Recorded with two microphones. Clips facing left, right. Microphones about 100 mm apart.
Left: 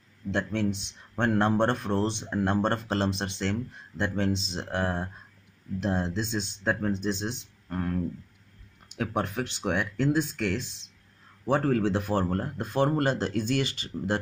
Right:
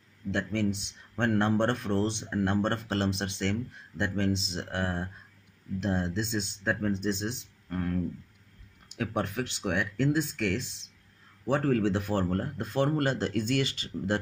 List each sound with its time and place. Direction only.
0.3 s speech: 30° left (ahead or behind)